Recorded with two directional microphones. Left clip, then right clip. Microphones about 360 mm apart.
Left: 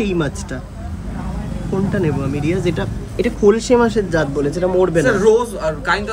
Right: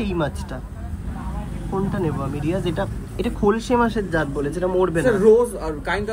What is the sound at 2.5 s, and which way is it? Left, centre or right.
Speech, centre.